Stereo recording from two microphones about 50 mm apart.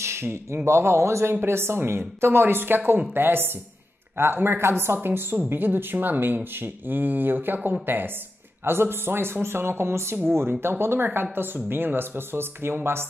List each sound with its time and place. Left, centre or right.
0.0 s a man's voice: right
1.3 s speech: right